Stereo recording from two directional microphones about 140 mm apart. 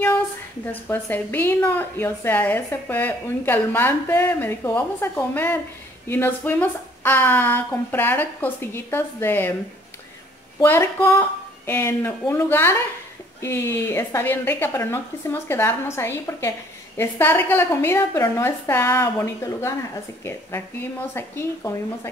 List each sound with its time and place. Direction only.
0.7 s a woman's voice: 15° left (ahead or behind)
10.6 s a woman's voice: 15° left (ahead or behind)